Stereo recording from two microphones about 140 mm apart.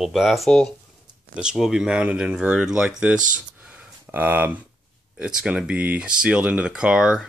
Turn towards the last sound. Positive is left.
turn(degrees=-5)  # may be behind; listen again after turning